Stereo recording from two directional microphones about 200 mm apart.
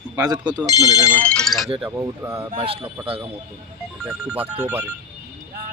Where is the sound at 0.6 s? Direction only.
20° left (ahead or behind); by 1.6 s 5° left (ahead or behind).